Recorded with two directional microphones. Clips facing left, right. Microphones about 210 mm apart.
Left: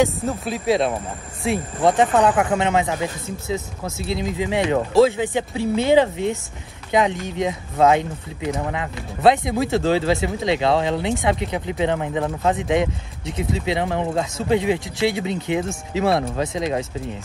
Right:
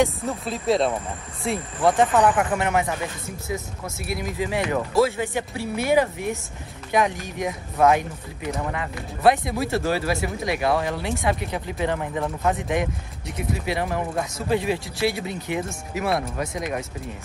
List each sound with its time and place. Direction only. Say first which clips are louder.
1.8 s speech: left 1 dB; 20° left (ahead or behind)